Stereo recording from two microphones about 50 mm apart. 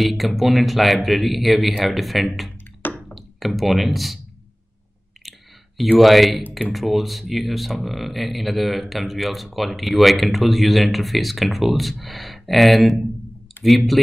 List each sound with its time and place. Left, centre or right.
0.0 s speech: centre
2.8 s music: left
3.2 s speech: centre
5.2 s clicking: centre
5.9 s speech: centre